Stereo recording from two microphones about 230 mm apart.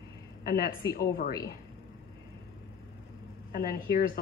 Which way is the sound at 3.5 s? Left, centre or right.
Left.